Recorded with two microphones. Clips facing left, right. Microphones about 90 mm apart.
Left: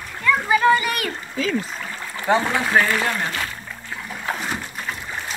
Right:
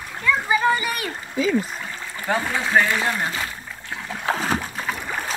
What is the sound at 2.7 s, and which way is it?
Speech, centre (ahead or behind).